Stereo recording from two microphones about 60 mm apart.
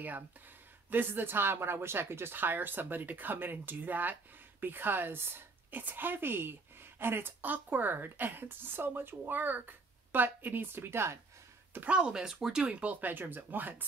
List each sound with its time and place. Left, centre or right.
0.8 s speech: right
11.8 s speech: centre
12.2 s speech: centre
12.7 s speech: right